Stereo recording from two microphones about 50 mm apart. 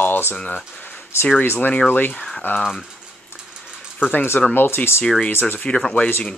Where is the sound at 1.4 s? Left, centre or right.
Left.